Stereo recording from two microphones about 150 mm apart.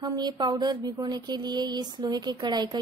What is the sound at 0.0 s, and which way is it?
Speech, 25° right (ahead or behind).